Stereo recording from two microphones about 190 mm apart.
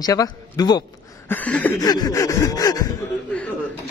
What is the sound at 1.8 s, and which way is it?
A man's voice, 20° left (ahead or behind).